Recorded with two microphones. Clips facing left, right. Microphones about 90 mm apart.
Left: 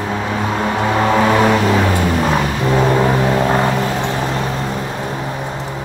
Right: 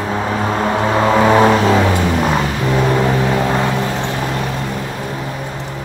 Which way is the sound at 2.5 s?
20° left (ahead or behind).